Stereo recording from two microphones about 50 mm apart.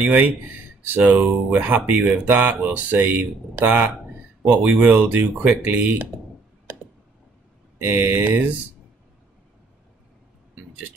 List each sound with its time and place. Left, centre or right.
0.0 s speech: right
7.8 s speech: right